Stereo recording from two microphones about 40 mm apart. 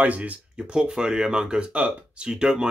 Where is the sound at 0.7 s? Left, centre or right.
Right.